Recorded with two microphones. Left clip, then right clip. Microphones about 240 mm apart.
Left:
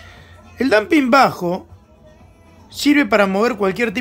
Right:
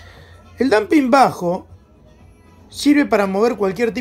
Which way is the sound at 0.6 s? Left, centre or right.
Centre.